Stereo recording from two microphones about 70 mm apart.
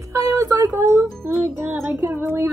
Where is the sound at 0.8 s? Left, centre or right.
Right.